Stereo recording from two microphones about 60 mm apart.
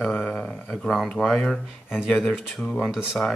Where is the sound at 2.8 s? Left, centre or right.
Centre.